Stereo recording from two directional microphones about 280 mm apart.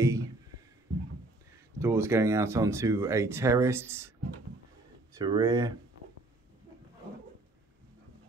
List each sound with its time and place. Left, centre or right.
0.0 s a sound: centre
1.7 s speech: centre
5.2 s speech: centre